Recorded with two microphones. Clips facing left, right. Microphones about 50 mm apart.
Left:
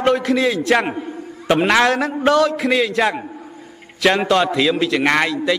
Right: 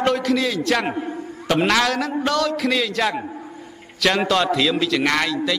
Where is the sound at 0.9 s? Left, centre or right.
Centre.